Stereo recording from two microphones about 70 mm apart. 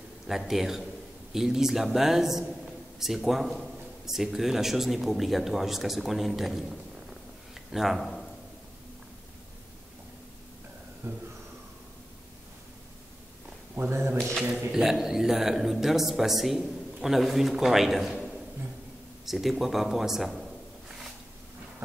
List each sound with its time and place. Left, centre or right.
0.3 s speech: centre
7.5 s a sound: centre
11.0 s speech: right
13.7 s speech: right
14.7 s speech: centre